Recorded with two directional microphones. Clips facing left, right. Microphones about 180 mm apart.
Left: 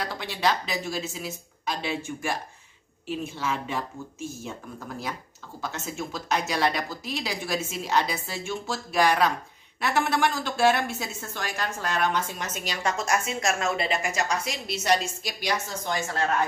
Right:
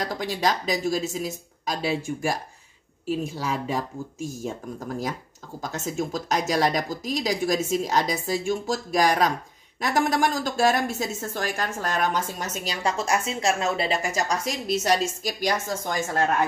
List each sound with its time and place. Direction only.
0.0 s a woman's voice: 40° right (ahead or behind)